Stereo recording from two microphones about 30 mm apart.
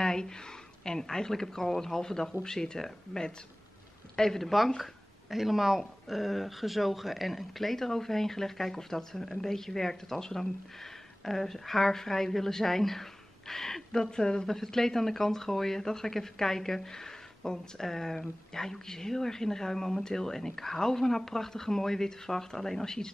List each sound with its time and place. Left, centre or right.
0.0 s a sound: left
0.8 s speech: centre
4.2 s speech: centre
5.3 s speech: centre
14.1 s speech: left
14.5 s speech: centre